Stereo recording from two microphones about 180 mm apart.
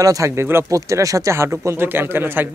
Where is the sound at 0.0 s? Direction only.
20° right (ahead or behind).